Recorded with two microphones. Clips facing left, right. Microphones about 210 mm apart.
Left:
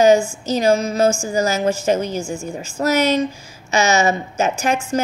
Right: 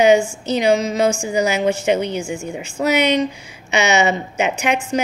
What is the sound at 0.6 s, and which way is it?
Speech, 15° right (ahead or behind).